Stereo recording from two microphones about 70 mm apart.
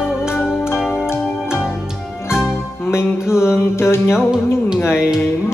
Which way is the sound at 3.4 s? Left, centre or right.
Left.